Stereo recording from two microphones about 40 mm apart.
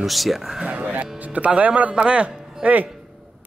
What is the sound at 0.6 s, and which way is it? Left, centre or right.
Speech, right.